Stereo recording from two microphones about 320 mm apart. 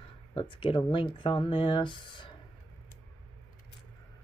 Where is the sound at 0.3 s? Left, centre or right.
Centre.